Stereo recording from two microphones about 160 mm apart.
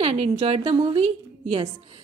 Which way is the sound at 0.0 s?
40° right (ahead or behind).